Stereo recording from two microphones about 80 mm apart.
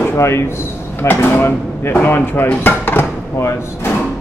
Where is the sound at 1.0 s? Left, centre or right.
Left.